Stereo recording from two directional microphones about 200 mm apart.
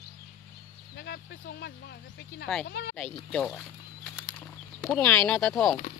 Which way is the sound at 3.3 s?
5° left (ahead or behind).